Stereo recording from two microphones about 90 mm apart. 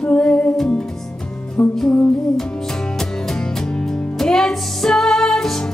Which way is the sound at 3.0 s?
5° left (ahead or behind).